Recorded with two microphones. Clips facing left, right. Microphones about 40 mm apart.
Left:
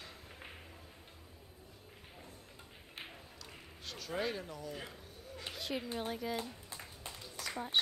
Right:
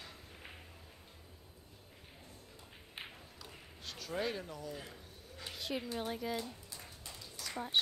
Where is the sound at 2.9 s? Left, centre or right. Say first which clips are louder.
Even; centre.